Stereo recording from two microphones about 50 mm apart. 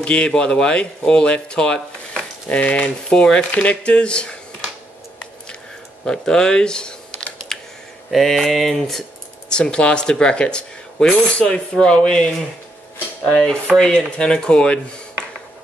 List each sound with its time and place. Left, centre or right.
0.0 s speech: centre
6.0 s speech: centre
7.5 s computer keyboard: centre
8.1 s mantra: centre
9.5 s speech: centre
13.7 s speech: centre